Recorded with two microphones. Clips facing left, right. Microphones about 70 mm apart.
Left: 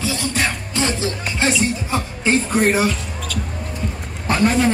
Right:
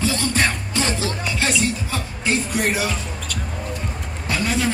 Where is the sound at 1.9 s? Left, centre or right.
Left.